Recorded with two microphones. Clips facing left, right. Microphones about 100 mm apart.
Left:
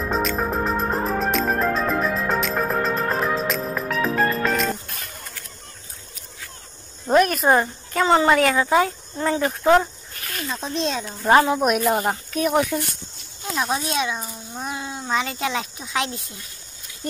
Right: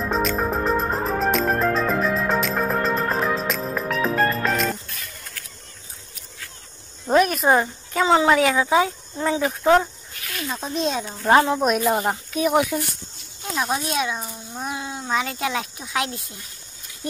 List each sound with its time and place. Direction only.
0.1 s music: centre (ahead or behind)
4.8 s music: 55° left (ahead or behind)
7.1 s speech: centre (ahead or behind)